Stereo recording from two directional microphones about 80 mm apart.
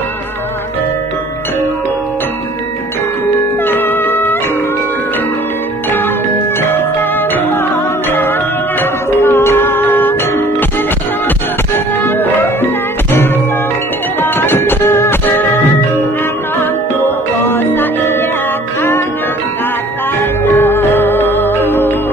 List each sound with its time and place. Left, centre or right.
3.6 s music: left
5.9 s music: left
20.2 s music: left